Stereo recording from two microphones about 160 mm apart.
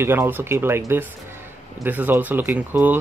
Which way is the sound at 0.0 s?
15° right (ahead or behind).